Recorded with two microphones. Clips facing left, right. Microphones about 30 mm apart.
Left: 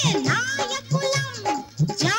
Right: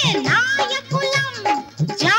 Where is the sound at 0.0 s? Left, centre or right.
Right.